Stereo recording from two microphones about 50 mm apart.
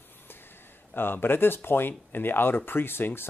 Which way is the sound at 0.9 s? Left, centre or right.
Left.